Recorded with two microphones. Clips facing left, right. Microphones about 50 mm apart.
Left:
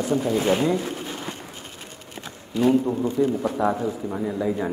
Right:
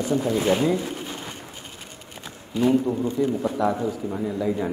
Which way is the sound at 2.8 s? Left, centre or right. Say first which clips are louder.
Left 1 dB; left.